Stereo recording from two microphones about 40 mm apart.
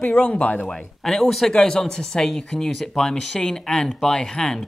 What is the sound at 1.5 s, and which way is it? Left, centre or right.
Speech, left.